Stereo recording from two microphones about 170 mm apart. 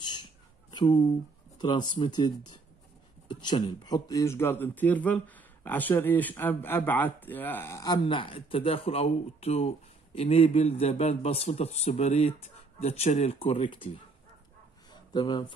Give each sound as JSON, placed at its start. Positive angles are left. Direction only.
{"t": 1.6, "sound": "speech", "side_deg": 25}
{"t": 8.1, "sound": "speech", "side_deg": 30}
{"t": 15.1, "sound": "speech", "side_deg": 25}